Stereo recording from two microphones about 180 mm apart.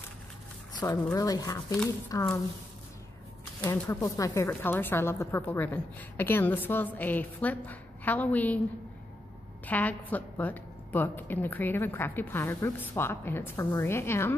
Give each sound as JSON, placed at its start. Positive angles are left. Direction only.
{"t": 0.8, "sound": "a woman's voice", "side_deg": 20}
{"t": 3.6, "sound": "a woman's voice", "side_deg": 10}
{"t": 9.7, "sound": "a woman's voice", "side_deg": 10}